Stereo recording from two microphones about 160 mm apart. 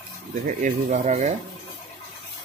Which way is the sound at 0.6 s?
50° right (ahead or behind).